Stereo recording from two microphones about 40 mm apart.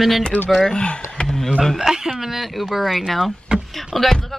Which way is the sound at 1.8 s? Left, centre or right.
Centre.